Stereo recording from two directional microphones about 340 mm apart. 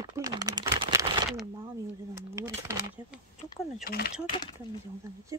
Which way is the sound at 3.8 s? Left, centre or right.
Left.